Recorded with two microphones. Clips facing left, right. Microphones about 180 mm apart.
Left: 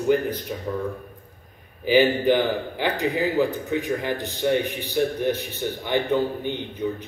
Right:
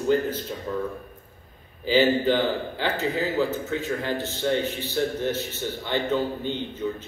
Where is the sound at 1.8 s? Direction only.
15° left (ahead or behind).